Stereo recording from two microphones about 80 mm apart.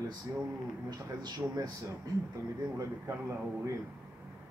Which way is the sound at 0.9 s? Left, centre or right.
Right.